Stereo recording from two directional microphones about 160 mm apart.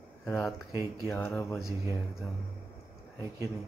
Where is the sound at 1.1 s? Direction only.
10° left (ahead or behind).